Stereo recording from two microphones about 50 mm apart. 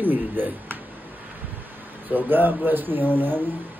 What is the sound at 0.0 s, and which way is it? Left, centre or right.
Speech, right.